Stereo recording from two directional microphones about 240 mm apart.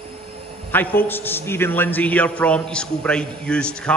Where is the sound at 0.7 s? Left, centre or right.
Centre.